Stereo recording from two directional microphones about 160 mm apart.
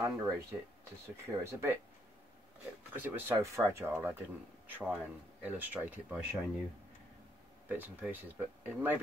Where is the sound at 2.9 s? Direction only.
10° right (ahead or behind).